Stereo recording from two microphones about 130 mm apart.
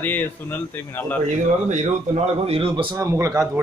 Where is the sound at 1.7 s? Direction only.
60° right (ahead or behind).